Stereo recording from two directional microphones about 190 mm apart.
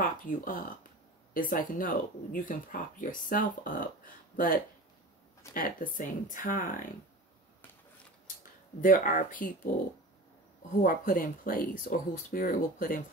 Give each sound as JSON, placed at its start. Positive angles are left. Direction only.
{"t": 0.0, "sound": "speech", "side_deg": 45}
{"t": 8.8, "sound": "speech", "side_deg": 45}
{"t": 10.8, "sound": "speech", "side_deg": 50}